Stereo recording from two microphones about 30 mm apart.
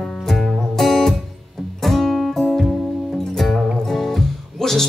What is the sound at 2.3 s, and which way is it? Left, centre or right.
Music, centre.